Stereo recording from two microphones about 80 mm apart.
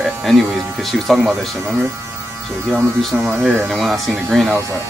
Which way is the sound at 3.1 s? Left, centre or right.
Right.